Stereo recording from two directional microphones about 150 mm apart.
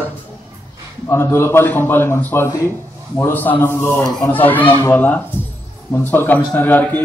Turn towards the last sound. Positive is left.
turn(degrees=10)  # may be behind; listen again after turning